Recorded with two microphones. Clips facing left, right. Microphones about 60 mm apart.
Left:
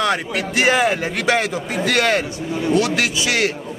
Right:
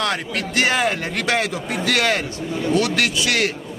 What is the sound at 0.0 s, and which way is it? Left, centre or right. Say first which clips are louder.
A man's voice: left 3 dB; centre.